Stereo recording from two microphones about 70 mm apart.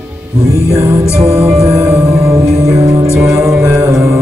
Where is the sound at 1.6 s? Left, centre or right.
Right.